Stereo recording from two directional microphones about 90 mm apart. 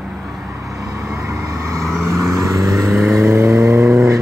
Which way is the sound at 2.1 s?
35° right (ahead or behind).